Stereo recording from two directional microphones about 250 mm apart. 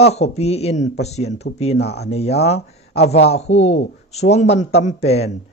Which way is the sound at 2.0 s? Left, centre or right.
Left.